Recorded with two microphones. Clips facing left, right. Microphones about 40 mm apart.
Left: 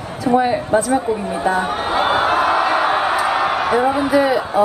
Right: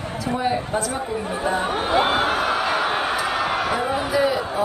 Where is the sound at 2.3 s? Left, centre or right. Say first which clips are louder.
Left 6 dB; centre.